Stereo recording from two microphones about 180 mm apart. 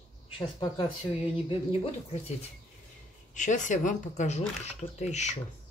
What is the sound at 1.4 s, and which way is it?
Speech, 30° left (ahead or behind).